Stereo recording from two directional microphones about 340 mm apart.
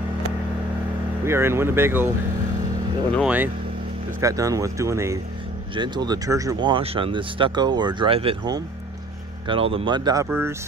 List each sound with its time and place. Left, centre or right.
1.2 s speech: centre
3.2 s speech: centre